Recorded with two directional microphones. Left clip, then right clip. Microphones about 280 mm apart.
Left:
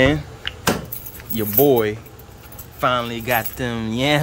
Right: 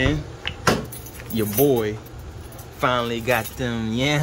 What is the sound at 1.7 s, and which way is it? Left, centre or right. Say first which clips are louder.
Speech: left 4 dB; centre.